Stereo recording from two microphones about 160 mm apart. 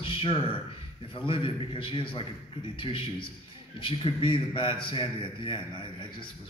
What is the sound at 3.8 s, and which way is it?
A woman's voice, 30° left (ahead or behind).